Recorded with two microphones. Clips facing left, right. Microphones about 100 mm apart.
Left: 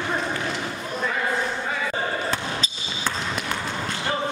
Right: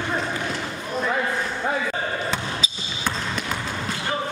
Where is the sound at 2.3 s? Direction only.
Centre (ahead or behind).